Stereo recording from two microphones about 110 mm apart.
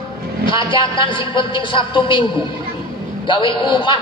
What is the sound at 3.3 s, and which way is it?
Speech, 45° left (ahead or behind).